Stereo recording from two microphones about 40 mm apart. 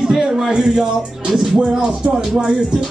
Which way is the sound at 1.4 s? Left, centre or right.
Right.